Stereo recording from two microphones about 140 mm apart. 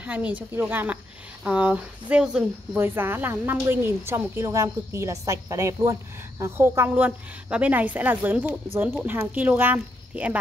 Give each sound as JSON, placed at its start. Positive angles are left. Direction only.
{"t": 0.0, "sound": "speech", "side_deg": -10}